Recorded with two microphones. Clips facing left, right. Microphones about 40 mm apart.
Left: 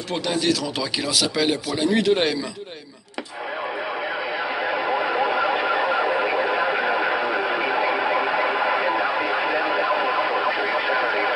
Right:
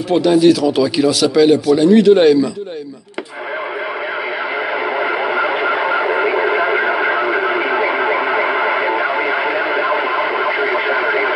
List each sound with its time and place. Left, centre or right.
0.1 s speech: centre
4.8 s radio: right